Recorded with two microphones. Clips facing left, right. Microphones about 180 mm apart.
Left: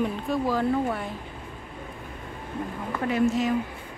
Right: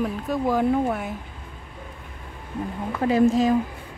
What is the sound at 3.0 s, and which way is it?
Speech, 35° right (ahead or behind).